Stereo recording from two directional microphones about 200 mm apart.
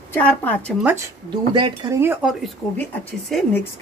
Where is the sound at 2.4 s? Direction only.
10° left (ahead or behind).